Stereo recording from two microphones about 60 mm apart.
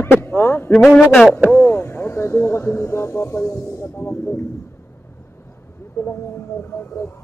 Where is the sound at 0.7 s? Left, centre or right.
Centre.